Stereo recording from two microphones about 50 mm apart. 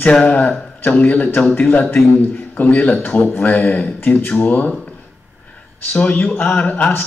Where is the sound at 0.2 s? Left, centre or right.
Left.